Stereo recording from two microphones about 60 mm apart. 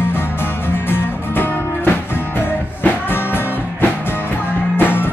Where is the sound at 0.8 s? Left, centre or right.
Left.